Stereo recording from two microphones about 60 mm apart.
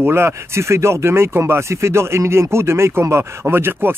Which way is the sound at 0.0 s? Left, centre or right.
Right.